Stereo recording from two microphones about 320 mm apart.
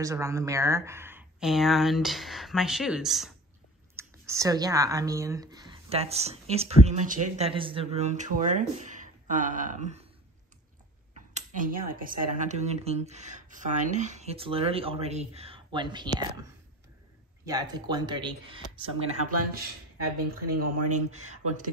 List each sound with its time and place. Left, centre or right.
0.0 s speech: centre
11.1 s speech: right
17.5 s speech: centre
20.6 s speech: right
21.1 s speech: right